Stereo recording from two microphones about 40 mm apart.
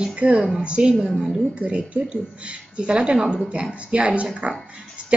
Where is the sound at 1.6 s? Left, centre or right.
Right.